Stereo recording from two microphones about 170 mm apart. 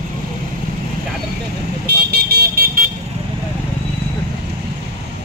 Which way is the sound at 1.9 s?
70° right (ahead or behind).